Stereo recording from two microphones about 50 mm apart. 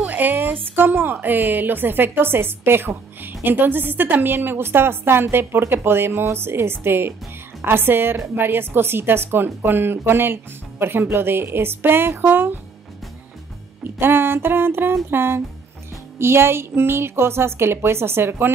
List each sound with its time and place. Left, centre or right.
0.1 s a sound: right
0.5 s speech: right
13.8 s a woman's voice: right